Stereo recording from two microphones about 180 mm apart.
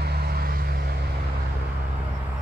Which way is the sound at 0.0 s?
60° right (ahead or behind).